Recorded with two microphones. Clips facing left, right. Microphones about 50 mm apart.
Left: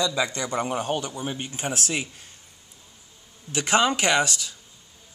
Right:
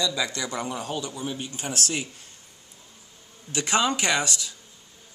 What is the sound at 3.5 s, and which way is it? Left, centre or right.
Speech, left.